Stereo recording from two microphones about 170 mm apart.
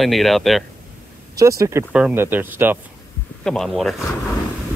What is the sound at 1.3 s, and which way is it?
Speech, 20° right (ahead or behind).